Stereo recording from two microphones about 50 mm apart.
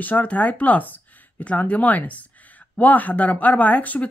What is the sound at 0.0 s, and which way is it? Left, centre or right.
Speech, left.